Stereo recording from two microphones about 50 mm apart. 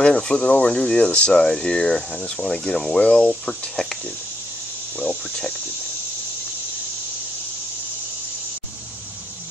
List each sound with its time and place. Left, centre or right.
0.0 s speech: centre
1.5 s speech: centre
5.3 s speech: centre